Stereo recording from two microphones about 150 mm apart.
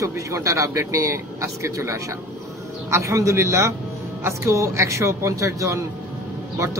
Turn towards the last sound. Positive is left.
turn(degrees=-20)  # may be behind; listen again after turning